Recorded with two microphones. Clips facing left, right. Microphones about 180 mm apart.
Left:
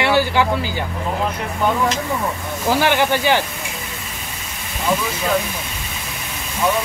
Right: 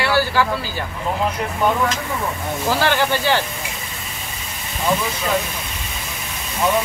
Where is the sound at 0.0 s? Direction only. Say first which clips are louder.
Left 2 dB; 20° left (ahead or behind).